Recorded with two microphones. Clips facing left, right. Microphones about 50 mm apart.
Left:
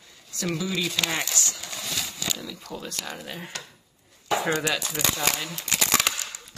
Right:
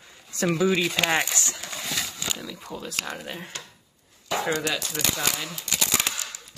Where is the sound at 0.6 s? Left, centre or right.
Right.